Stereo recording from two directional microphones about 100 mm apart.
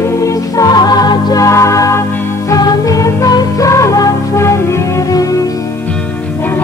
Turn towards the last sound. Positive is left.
turn(degrees=30)  # may be behind; listen again after turning